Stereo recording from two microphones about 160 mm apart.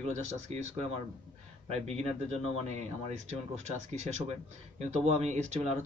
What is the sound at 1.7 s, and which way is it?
Speech, 40° right (ahead or behind).